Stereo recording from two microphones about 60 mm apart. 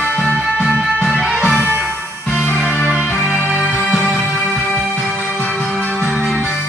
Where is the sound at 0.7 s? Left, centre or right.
Centre.